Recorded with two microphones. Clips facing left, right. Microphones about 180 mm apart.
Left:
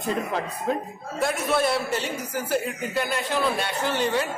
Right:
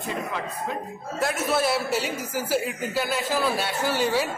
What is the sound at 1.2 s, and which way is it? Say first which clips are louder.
Speech: left 1 dB; 5° right (ahead or behind).